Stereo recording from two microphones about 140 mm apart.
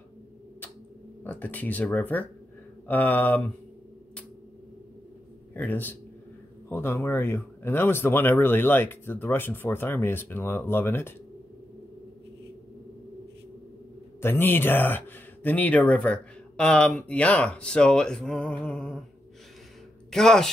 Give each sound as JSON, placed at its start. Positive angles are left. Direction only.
{"t": 1.2, "sound": "speech", "side_deg": 10}
{"t": 5.5, "sound": "a man's voice", "side_deg": 15}
{"t": 14.2, "sound": "speech", "side_deg": 15}
{"t": 20.1, "sound": "speech", "side_deg": 5}